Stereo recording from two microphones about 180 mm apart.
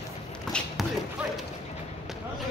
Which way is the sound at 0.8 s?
Centre (ahead or behind).